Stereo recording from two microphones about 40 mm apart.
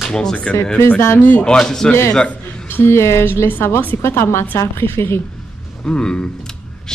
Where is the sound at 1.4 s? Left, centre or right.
Centre.